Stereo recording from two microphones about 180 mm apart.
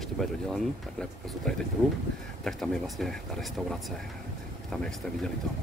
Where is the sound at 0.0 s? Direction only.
Centre (ahead or behind).